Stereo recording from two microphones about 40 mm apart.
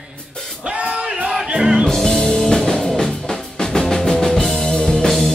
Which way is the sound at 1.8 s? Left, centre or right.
Centre.